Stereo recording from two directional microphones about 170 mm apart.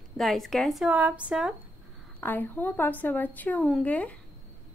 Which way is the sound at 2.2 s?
10° left (ahead or behind).